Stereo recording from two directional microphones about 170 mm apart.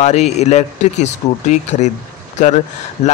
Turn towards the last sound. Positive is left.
turn(degrees=45)  # may be behind; listen again after turning